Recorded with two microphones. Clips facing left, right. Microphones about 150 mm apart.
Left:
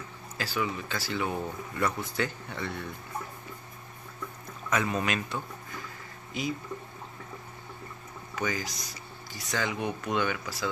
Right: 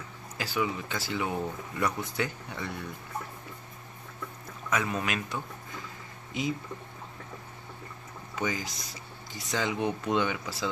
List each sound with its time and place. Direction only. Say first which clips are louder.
0.4 s speech: right 1 dB; 20° right (ahead or behind)
4.6 s speech: left 2 dB; 5° right (ahead or behind)
6.3 s speech: right 1 dB; 20° right (ahead or behind)
8.4 s speech: even; 20° right (ahead or behind)